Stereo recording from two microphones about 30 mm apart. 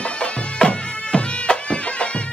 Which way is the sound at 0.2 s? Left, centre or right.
Left.